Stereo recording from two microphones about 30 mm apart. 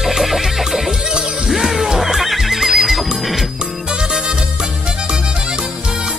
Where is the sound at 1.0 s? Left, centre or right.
Right.